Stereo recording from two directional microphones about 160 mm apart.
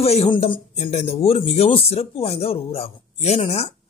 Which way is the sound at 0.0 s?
40° left (ahead or behind).